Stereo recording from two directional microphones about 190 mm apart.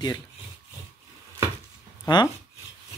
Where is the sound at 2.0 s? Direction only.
20° left (ahead or behind).